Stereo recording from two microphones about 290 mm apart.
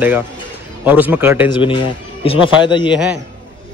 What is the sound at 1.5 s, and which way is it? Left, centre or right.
Speech, centre.